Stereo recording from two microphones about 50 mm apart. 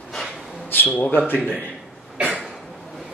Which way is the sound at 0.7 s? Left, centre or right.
Left.